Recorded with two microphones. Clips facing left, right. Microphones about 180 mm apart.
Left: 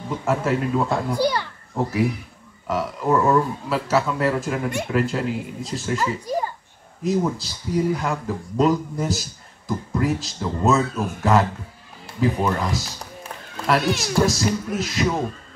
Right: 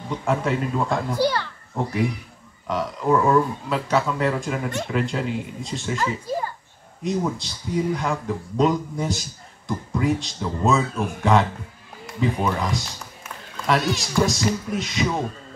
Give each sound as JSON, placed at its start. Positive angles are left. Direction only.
{"t": 0.1, "sound": "speech", "side_deg": 0}
{"t": 1.1, "sound": "a child's voice", "side_deg": 15}
{"t": 1.8, "sound": "speech", "side_deg": 0}
{"t": 6.3, "sound": "a child's voice", "side_deg": 15}
{"t": 7.0, "sound": "speech", "side_deg": 0}
{"t": 13.9, "sound": "speech", "side_deg": 0}